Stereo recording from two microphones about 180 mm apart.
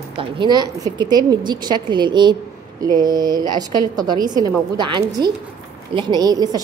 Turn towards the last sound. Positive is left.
turn(degrees=-20)  # may be behind; listen again after turning